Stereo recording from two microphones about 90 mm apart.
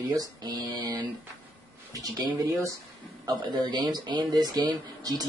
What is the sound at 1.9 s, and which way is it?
Speech, 40° right (ahead or behind).